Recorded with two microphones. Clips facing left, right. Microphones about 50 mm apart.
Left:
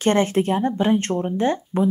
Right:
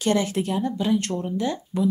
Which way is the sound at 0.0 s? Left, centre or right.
Left.